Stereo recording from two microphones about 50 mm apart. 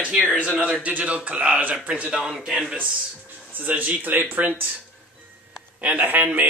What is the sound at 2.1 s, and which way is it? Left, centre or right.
Speech, centre.